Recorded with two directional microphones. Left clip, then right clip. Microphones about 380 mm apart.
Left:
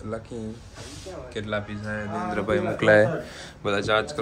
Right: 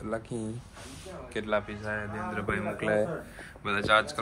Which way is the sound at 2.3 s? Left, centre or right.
Centre.